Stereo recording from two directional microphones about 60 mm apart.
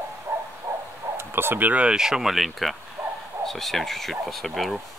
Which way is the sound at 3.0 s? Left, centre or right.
Right.